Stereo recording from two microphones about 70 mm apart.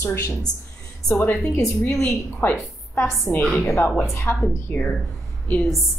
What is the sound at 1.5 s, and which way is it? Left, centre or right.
Speech, left.